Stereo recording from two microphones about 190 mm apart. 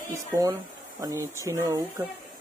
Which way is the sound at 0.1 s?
15° right (ahead or behind).